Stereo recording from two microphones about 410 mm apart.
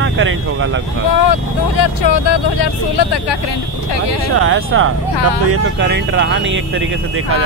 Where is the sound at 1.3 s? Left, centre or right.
Left.